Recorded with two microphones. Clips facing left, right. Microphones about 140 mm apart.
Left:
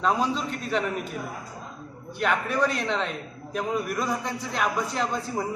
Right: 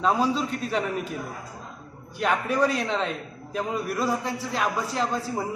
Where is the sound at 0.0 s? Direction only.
5° right (ahead or behind).